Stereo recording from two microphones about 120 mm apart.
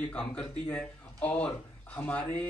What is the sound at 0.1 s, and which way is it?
Speech, 10° left (ahead or behind).